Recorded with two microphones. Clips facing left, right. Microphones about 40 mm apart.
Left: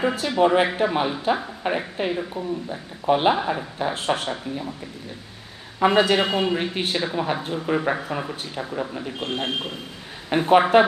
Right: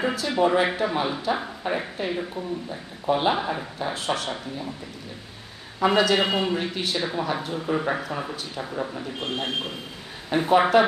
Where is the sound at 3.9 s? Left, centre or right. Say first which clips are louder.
Left 2 dB; left.